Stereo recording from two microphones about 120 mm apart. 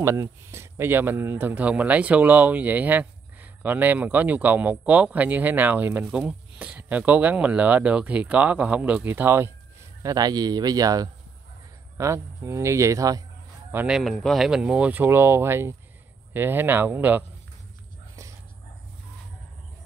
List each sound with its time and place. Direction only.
0.0 s a man's voice: 25° right (ahead or behind)
13.8 s a man's voice: centre (ahead or behind)